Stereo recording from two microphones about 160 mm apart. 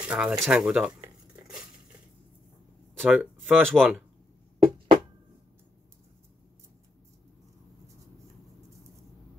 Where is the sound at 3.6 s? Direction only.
5° left (ahead or behind).